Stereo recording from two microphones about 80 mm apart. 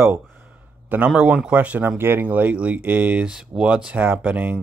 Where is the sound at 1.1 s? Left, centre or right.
Centre.